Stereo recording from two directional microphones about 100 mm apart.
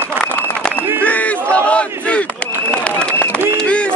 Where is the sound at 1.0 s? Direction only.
15° left (ahead or behind).